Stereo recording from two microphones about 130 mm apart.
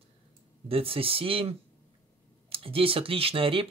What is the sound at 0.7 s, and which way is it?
Speech, 45° right (ahead or behind).